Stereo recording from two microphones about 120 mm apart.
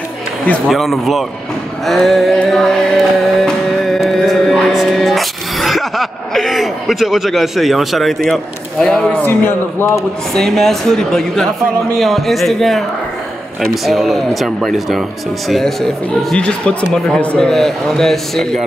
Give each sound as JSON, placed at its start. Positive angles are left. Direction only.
{"t": 0.7, "sound": "speech", "side_deg": 0}
{"t": 3.4, "sound": "music", "side_deg": 0}
{"t": 9.2, "sound": "speech", "side_deg": 15}
{"t": 10.3, "sound": "speech", "side_deg": 5}